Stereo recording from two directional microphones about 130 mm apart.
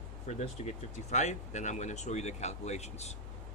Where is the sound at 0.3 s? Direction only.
60° left (ahead or behind).